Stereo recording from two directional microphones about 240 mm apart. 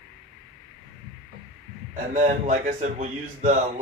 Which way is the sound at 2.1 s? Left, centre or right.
Right.